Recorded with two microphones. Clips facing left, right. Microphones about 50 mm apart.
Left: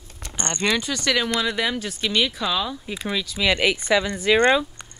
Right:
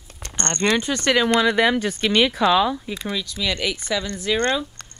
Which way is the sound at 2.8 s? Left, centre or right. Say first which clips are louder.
Even; centre.